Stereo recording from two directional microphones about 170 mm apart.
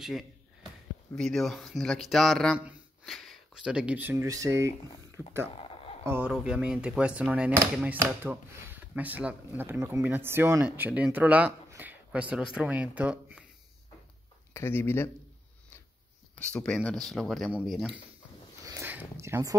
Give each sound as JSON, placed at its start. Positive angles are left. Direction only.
{"t": 0.0, "sound": "speech", "side_deg": 0}
{"t": 5.2, "sound": "speech", "side_deg": 15}
{"t": 5.6, "sound": "a sound", "side_deg": 30}
{"t": 6.0, "sound": "speech", "side_deg": -10}
{"t": 14.5, "sound": "speech", "side_deg": 15}
{"t": 16.5, "sound": "speech", "side_deg": 5}
{"t": 18.7, "sound": "a sound", "side_deg": -15}